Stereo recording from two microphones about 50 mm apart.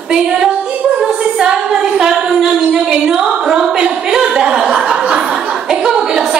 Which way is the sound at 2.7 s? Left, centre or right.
Centre.